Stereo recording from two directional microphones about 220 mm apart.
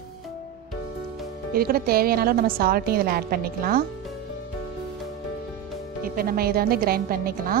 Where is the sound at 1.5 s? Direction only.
45° right (ahead or behind).